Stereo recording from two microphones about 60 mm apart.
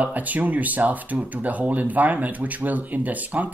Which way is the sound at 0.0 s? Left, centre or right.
Right.